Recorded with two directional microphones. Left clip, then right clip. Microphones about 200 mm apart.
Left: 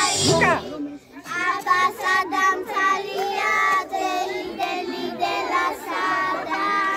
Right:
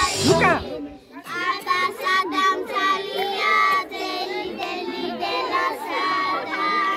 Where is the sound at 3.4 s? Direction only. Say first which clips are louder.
Right 2 dB; 20° left (ahead or behind).